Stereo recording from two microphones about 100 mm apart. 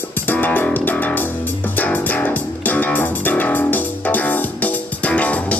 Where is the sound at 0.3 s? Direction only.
20° left (ahead or behind).